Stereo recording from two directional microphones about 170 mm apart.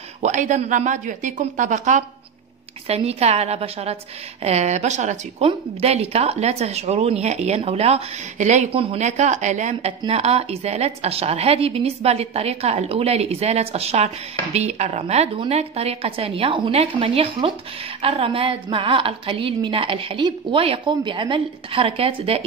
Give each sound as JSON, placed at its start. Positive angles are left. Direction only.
{"t": 0.2, "sound": "a woman's voice", "side_deg": -45}